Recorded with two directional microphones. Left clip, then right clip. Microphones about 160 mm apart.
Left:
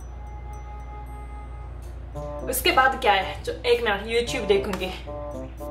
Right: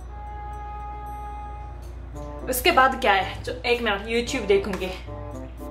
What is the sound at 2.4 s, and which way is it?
A woman's voice, 25° right (ahead or behind).